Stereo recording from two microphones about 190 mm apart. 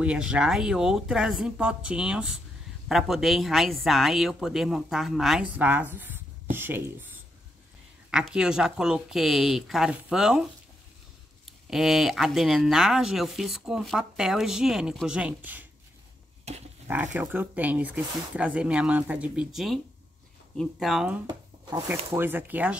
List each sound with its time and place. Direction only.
0.0 s speech: 5° right (ahead or behind)
8.1 s speech: 5° right (ahead or behind)
11.4 s speech: centre (ahead or behind)
16.5 s a sound: 35° right (ahead or behind)
16.8 s speech: 10° right (ahead or behind)
21.3 s a sound: 20° right (ahead or behind)
21.8 s speech: 10° right (ahead or behind)